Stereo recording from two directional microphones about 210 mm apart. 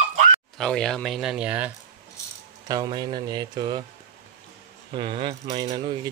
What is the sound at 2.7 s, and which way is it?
Speech, 20° right (ahead or behind).